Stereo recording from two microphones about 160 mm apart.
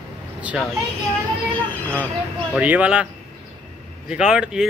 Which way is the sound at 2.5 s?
10° right (ahead or behind).